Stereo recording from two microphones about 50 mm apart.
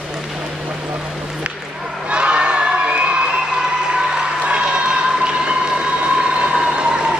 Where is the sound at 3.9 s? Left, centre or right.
Centre.